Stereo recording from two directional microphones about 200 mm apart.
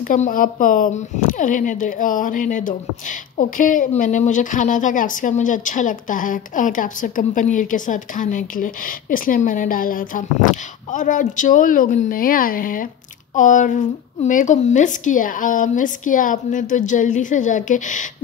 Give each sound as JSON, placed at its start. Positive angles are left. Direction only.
{"t": 0.0, "sound": "speech", "side_deg": 40}